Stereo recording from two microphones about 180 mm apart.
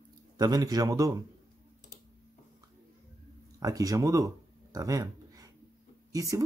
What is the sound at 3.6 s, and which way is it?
Speech, 20° right (ahead or behind).